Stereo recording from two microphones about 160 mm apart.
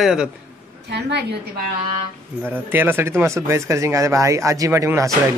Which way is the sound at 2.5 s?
10° right (ahead or behind).